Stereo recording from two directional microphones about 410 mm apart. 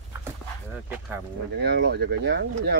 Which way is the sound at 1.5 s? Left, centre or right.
Right.